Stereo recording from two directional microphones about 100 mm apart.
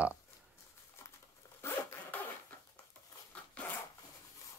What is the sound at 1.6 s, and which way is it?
Zipper, 20° left (ahead or behind).